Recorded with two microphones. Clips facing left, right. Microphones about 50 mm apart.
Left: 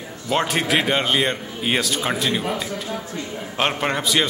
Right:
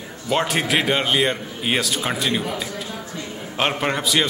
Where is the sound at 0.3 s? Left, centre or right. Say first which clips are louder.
Even; centre.